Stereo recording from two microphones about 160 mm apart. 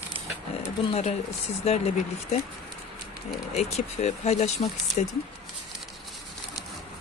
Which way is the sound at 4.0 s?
45° left (ahead or behind).